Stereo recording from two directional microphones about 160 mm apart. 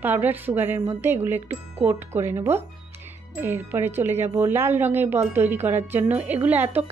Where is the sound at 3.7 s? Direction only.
15° right (ahead or behind).